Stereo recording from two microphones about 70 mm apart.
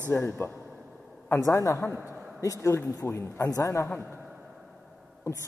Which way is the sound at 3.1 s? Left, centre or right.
Left.